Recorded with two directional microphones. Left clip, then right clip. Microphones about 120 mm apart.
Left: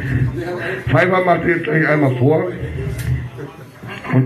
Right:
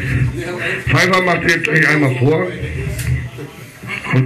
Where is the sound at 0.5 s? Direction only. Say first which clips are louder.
Right 1 dB; 40° left (ahead or behind).